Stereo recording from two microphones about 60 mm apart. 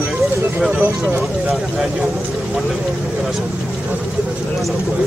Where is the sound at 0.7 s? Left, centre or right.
Right.